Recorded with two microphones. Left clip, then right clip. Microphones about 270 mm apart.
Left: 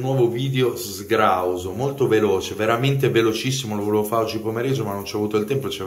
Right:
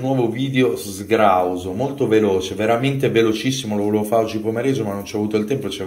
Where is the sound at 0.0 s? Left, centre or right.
Centre.